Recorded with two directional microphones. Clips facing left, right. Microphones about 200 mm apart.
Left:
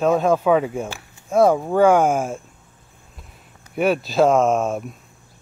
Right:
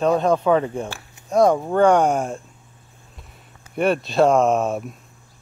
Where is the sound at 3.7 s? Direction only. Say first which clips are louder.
Left 1 dB; centre (ahead or behind).